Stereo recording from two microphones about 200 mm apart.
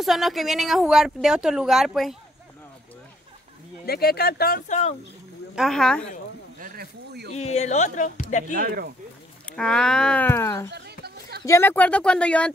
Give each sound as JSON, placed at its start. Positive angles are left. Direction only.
{"t": 0.0, "sound": "speech", "side_deg": 0}
{"t": 3.8, "sound": "speech", "side_deg": 50}
{"t": 5.6, "sound": "speech", "side_deg": 0}
{"t": 6.6, "sound": "a sound", "side_deg": -45}
{"t": 7.5, "sound": "speech", "side_deg": 35}
{"t": 8.5, "sound": "speech", "side_deg": -45}
{"t": 9.5, "sound": "speech", "side_deg": 5}
{"t": 10.7, "sound": "a sound", "side_deg": -55}
{"t": 11.4, "sound": "speech", "side_deg": 10}